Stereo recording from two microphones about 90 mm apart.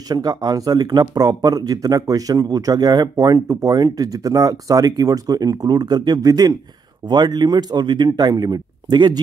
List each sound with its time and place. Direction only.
0.1 s speech: 50° right (ahead or behind)